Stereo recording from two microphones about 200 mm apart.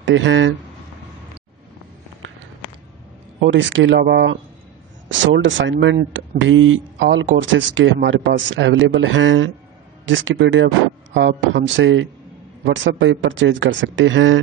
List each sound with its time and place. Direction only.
0.0 s speech: 70° right (ahead or behind)
3.3 s speech: 65° right (ahead or behind)
5.2 s speech: 70° right (ahead or behind)